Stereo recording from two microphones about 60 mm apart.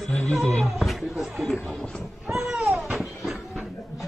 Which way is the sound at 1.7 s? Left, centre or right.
Centre.